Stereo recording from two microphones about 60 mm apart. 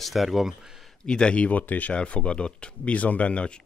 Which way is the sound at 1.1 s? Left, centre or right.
Centre.